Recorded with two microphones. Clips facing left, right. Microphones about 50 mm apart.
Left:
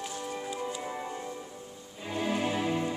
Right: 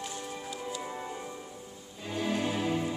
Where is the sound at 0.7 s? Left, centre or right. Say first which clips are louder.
Left 1 dB; centre.